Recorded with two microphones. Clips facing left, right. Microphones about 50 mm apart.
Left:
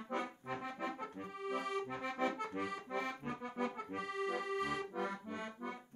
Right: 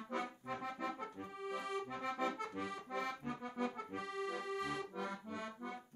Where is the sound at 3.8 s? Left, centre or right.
Left.